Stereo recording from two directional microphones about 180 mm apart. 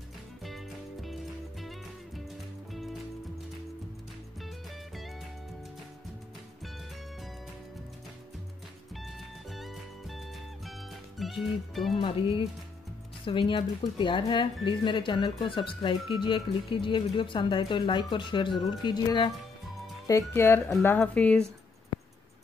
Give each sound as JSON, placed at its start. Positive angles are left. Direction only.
{"t": 1.0, "sound": "music", "side_deg": 0}
{"t": 8.9, "sound": "music", "side_deg": 0}
{"t": 11.1, "sound": "speech", "side_deg": 0}
{"t": 12.0, "sound": "speech", "side_deg": 30}
{"t": 20.1, "sound": "speech", "side_deg": 15}